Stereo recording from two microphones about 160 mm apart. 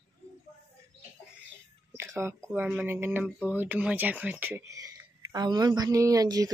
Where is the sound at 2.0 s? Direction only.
15° right (ahead or behind).